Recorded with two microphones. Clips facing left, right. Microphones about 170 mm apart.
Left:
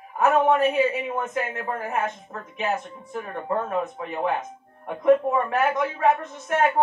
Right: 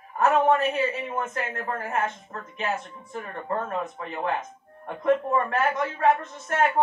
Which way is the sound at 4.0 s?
15° left (ahead or behind).